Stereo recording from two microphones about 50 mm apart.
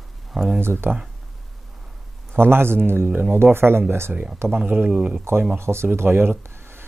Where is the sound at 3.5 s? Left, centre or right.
Right.